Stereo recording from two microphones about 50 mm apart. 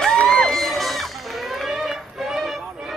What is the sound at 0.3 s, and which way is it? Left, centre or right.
Crowd, centre.